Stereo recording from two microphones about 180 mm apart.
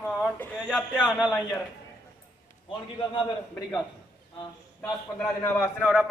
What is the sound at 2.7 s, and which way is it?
Speech, 25° left (ahead or behind).